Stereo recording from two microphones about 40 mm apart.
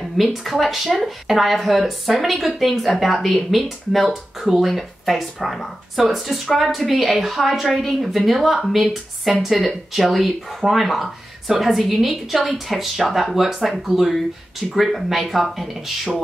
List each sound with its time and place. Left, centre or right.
0.2 s speech: centre